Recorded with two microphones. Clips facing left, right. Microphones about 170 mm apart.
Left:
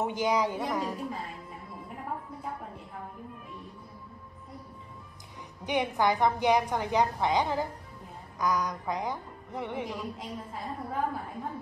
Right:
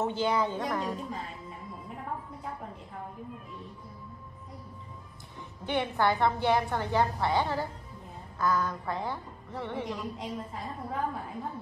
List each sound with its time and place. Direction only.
0.0 s a woman's voice: 15° left (ahead or behind)
0.6 s a woman's voice: 5° left (ahead or behind)
5.6 s a woman's voice: 15° left (ahead or behind)
9.9 s a woman's voice: centre (ahead or behind)